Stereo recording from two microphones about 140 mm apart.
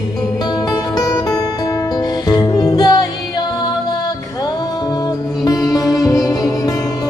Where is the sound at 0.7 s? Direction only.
25° left (ahead or behind).